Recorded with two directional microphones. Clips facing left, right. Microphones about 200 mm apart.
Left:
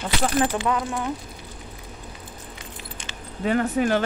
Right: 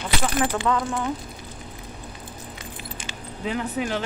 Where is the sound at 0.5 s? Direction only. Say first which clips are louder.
Right 1 dB; 15° left (ahead or behind).